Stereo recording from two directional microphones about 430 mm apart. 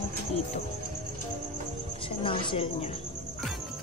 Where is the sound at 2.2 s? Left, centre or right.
Centre.